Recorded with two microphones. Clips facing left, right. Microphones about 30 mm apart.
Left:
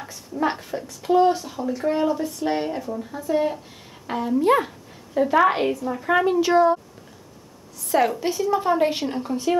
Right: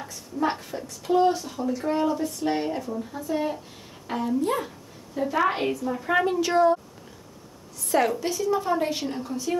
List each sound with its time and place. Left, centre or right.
0.0 s speech: centre
4.4 s speech: left
4.6 s speech: centre
7.9 s a woman's voice: centre
8.2 s speech: centre